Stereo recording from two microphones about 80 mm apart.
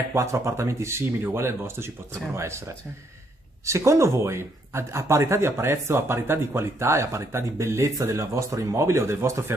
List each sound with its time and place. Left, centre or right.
0.1 s speech: right